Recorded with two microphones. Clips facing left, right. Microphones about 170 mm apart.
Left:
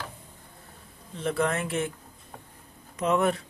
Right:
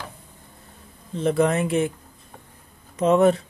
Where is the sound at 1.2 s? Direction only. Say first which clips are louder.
Right 7 dB; 20° right (ahead or behind).